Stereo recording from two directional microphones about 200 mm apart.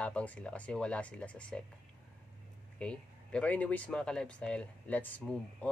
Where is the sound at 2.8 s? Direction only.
5° left (ahead or behind).